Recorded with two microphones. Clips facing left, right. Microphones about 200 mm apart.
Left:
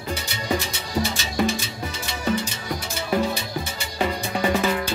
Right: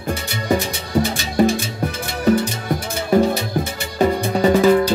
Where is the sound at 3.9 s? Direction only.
40° right (ahead or behind).